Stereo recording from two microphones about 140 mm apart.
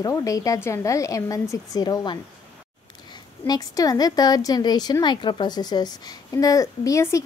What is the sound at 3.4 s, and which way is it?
Speech, 30° left (ahead or behind).